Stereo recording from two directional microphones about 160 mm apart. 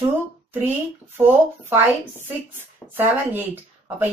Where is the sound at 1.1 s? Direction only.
15° right (ahead or behind).